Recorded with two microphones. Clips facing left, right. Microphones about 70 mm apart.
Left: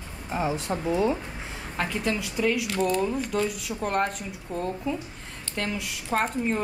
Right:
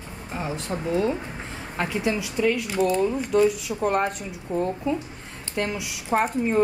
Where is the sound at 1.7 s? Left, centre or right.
Centre.